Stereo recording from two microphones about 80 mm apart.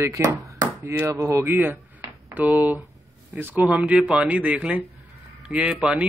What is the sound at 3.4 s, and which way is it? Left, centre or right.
A man's voice, centre.